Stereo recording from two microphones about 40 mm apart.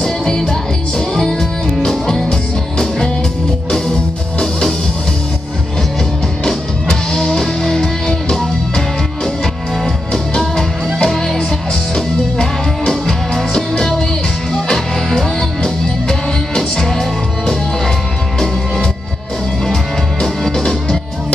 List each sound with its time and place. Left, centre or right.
0.0 s music: centre
3.7 s music: centre
6.4 s music: centre
10.4 s music: centre
19.6 s music: centre